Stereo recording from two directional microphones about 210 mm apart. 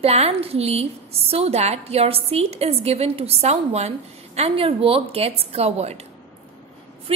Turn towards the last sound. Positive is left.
turn(degrees=-25)  # may be behind; listen again after turning